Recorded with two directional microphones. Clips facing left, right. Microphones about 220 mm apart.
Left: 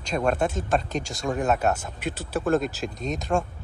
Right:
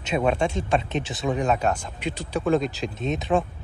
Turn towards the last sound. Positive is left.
turn(degrees=0)  # may be behind; listen again after turning